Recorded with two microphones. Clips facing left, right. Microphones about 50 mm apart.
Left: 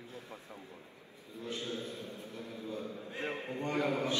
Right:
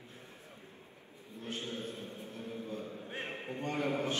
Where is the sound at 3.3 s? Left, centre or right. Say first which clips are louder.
Left 3 dB; left.